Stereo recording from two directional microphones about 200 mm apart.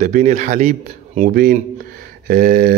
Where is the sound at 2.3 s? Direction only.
50° right (ahead or behind).